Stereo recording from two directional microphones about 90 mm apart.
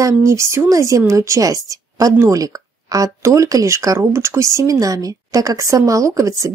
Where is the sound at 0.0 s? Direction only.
30° right (ahead or behind).